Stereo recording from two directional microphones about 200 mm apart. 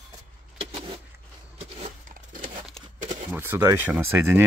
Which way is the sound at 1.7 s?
40° right (ahead or behind).